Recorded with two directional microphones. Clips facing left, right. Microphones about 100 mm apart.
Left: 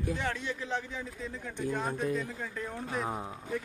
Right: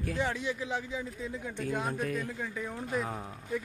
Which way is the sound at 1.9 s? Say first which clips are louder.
Left 1 dB; 20° left (ahead or behind).